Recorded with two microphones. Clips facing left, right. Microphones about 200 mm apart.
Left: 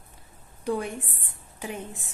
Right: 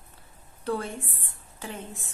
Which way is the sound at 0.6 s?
15° left (ahead or behind).